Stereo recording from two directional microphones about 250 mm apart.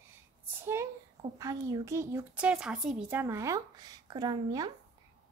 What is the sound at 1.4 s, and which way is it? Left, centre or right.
Speech, centre.